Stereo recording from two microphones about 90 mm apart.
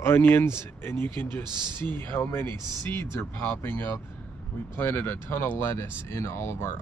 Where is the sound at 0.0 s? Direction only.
25° left (ahead or behind).